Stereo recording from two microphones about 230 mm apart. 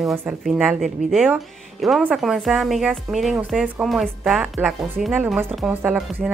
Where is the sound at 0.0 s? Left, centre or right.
Centre.